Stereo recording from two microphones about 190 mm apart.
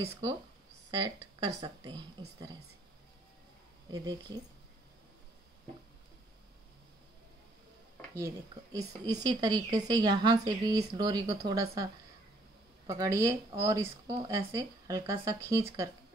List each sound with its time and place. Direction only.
0.9 s a woman's voice: 25° right (ahead or behind)
3.9 s a woman's voice: 20° right (ahead or behind)
8.7 s a woman's voice: 20° right (ahead or behind)